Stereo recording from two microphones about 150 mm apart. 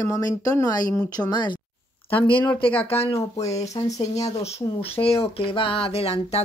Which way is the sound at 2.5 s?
35° left (ahead or behind).